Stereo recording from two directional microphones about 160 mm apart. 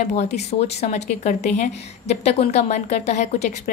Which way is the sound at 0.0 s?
45° left (ahead or behind).